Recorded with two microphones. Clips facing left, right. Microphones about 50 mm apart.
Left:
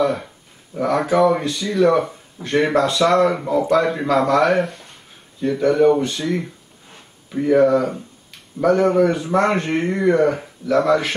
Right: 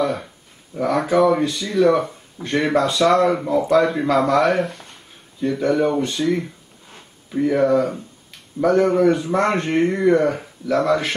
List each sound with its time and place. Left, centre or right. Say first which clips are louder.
0.0 s speech: left 2 dB; centre
2.4 s speech: right 1 dB; centre
2.8 s speech: right 1 dB; centre